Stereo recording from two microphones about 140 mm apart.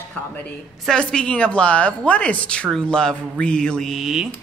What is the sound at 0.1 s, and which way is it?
A woman's voice, 10° left (ahead or behind).